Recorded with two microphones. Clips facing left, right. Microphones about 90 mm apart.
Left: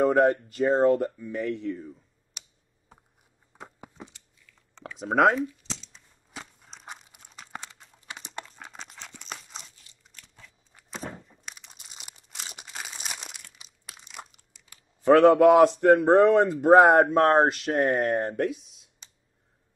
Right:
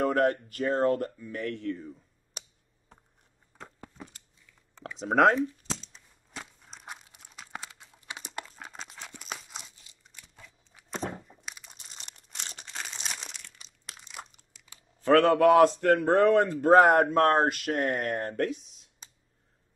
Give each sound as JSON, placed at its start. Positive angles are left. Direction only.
{"t": 0.1, "sound": "speech", "side_deg": 20}
{"t": 3.5, "sound": "a sound", "side_deg": 10}
{"t": 4.9, "sound": "speech", "side_deg": 0}
{"t": 5.6, "sound": "a sound", "side_deg": -45}
{"t": 5.9, "sound": "a sound", "side_deg": 0}
{"t": 10.1, "sound": "biting", "side_deg": -10}
{"t": 10.9, "sound": "crumpling", "side_deg": 0}
{"t": 15.0, "sound": "a man's voice", "side_deg": 15}
{"t": 16.9, "sound": "speech", "side_deg": 25}
{"t": 18.3, "sound": "speech", "side_deg": 5}